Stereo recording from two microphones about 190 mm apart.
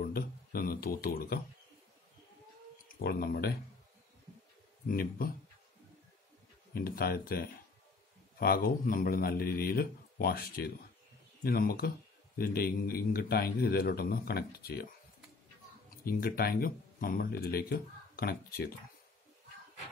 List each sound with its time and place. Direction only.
0.0 s a sound: 50° left (ahead or behind)
3.0 s speech: 55° left (ahead or behind)
4.8 s a man's voice: 50° left (ahead or behind)
6.7 s a man's voice: 50° left (ahead or behind)
16.0 s speech: 50° left (ahead or behind)